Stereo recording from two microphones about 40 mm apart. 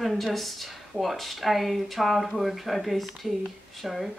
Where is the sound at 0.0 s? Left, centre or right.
Centre.